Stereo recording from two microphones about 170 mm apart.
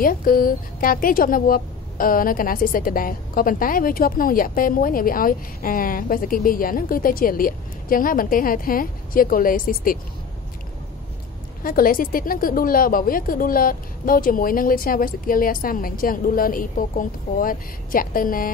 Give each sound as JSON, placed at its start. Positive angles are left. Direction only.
{"t": 0.0, "sound": "a woman's voice", "side_deg": 55}
{"t": 11.6, "sound": "a woman's voice", "side_deg": 55}